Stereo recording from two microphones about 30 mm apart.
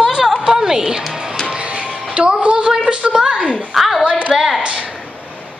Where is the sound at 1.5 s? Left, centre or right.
Right.